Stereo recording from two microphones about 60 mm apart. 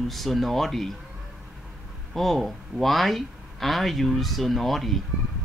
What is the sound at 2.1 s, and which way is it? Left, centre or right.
Speech, centre.